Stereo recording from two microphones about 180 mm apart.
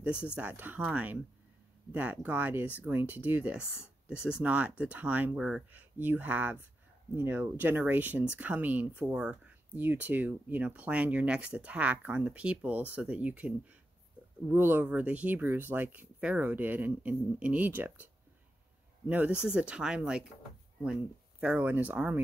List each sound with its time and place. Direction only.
0.0 s speech: 5° right (ahead or behind)